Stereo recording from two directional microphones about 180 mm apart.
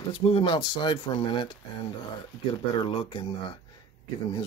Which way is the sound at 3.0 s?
30° left (ahead or behind).